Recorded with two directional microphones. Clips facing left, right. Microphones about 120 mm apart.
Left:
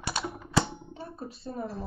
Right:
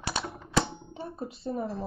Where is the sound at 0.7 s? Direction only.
25° right (ahead or behind).